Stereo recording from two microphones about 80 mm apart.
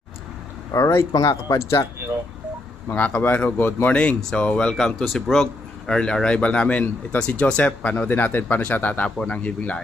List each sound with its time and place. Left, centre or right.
0.7 s speech: left
2.9 s a man's voice: left